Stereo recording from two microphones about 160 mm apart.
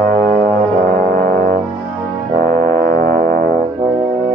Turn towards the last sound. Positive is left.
turn(degrees=-60)  # may be behind; listen again after turning